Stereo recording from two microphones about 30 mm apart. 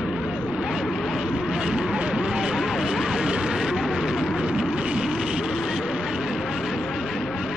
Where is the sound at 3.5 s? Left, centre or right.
Centre.